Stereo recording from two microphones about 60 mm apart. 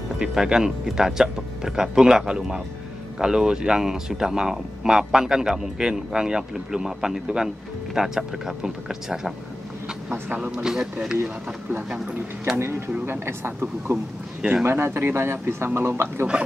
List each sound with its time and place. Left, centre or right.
0.2 s speech: centre
10.1 s speech: right
10.5 s speech: centre
11.7 s speech: right
12.5 s speech: right